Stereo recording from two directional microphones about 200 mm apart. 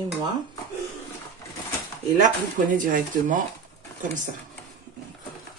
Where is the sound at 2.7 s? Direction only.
40° right (ahead or behind).